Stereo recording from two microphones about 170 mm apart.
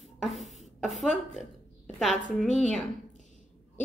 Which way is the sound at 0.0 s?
Centre (ahead or behind).